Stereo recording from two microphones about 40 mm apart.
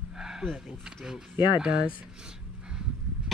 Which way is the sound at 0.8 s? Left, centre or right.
Centre.